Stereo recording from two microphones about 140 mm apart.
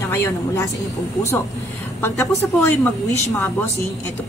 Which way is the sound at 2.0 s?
20° left (ahead or behind).